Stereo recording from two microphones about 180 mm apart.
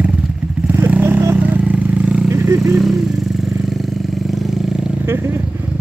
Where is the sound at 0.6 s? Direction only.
10° right (ahead or behind).